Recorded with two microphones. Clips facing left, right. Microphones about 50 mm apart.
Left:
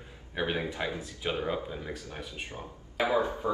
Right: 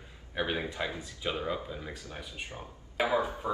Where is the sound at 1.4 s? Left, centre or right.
Centre.